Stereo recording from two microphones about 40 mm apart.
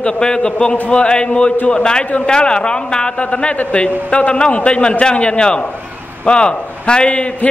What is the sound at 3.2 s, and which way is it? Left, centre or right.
A man's voice, left.